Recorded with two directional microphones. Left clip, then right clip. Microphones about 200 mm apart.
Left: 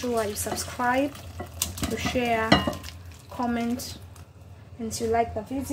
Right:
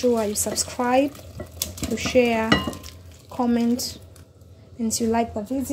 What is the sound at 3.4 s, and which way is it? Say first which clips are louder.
Speech: right 5 dB; 25° right (ahead or behind).